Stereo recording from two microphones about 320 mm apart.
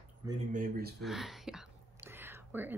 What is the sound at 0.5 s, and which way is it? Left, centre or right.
Speech, right.